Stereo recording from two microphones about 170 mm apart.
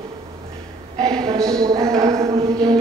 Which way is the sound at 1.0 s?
20° right (ahead or behind).